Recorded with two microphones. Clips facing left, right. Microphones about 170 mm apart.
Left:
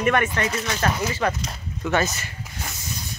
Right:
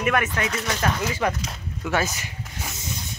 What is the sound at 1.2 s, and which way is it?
Speech, 10° right (ahead or behind).